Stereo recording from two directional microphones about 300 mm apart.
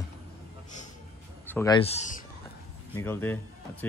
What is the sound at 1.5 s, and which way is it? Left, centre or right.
Speech, centre.